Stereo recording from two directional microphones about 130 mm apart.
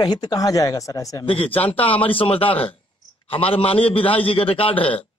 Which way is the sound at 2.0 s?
45° left (ahead or behind).